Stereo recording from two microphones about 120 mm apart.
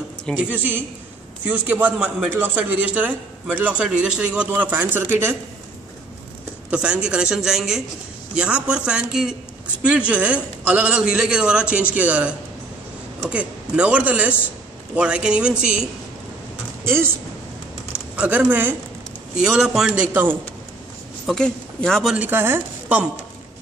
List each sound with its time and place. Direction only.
0.5 s a man's voice: 15° right (ahead or behind)
6.7 s a man's voice: 10° right (ahead or behind)
16.8 s speech: 20° right (ahead or behind)
18.1 s a man's voice: 10° right (ahead or behind)
19.3 s a man's voice: 5° right (ahead or behind)
21.3 s speech: 5° left (ahead or behind)
22.1 s a man's voice: 15° right (ahead or behind)